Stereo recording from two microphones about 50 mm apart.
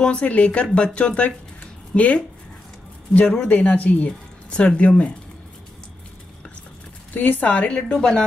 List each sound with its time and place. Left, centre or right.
0.0 s speech: left
1.6 s a sound: left
3.1 s speech: left
7.2 s a woman's voice: left
7.7 s a woman's voice: centre